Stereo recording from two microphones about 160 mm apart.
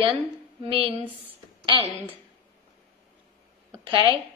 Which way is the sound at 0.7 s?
35° right (ahead or behind).